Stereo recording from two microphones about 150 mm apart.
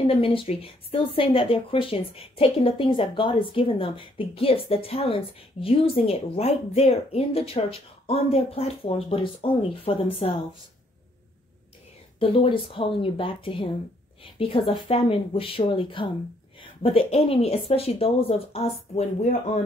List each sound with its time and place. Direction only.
0.0 s speech: 40° left (ahead or behind)
12.2 s a woman's voice: 35° left (ahead or behind)